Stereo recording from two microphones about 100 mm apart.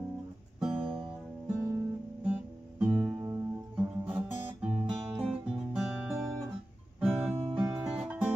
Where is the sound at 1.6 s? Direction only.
20° right (ahead or behind).